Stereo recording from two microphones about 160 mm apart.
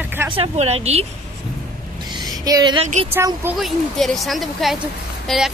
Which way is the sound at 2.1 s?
25° right (ahead or behind).